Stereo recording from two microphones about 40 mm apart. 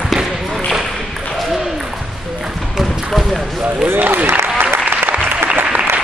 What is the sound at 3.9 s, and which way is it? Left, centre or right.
Speech, right.